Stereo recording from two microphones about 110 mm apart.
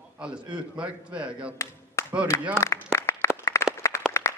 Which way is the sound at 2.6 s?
25° left (ahead or behind).